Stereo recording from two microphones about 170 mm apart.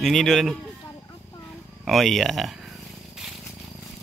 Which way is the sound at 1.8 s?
Centre (ahead or behind).